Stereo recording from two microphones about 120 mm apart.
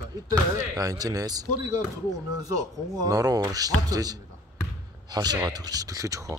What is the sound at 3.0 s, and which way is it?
Speech, 30° right (ahead or behind).